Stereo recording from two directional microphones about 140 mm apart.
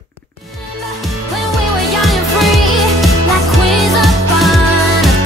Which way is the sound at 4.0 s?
Centre (ahead or behind).